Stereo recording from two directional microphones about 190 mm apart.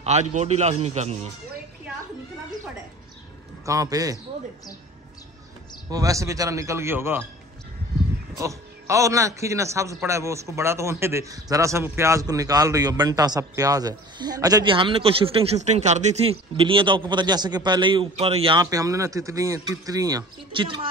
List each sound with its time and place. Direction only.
0.0 s a man's voice: 35° right (ahead or behind)
3.6 s a man's voice: 20° right (ahead or behind)
5.9 s a man's voice: 20° right (ahead or behind)
8.4 s a man's voice: 15° right (ahead or behind)